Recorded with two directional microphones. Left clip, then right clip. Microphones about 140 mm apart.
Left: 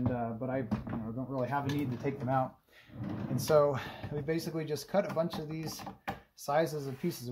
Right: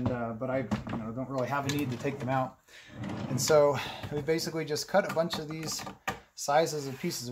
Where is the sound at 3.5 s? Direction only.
Centre (ahead or behind).